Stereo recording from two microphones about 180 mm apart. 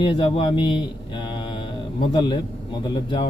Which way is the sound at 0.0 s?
30° left (ahead or behind).